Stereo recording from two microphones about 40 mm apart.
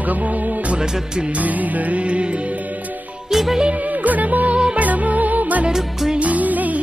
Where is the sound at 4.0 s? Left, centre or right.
Right.